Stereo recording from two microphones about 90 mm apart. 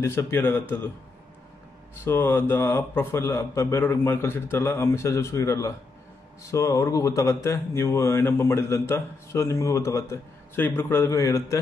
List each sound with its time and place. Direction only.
0.0 s a man's voice: 30° left (ahead or behind)
2.0 s a man's voice: 25° left (ahead or behind)